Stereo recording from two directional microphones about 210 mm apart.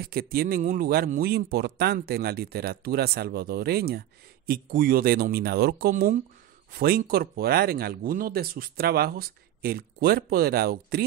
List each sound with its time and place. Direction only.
0.0 s speech: 45° right (ahead or behind)